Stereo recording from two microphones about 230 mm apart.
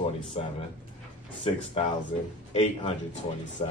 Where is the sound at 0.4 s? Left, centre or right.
Left.